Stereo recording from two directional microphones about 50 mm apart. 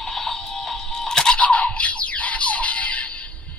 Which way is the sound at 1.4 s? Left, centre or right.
Left.